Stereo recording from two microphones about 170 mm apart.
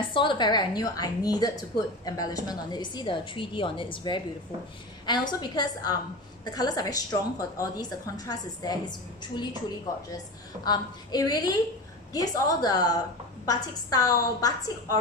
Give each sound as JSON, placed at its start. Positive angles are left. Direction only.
{"t": 0.1, "sound": "a woman's voice", "side_deg": 30}
{"t": 10.6, "sound": "a woman's voice", "side_deg": 25}